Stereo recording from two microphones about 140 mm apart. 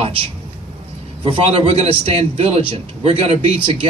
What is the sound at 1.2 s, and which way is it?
Speech, 40° right (ahead or behind).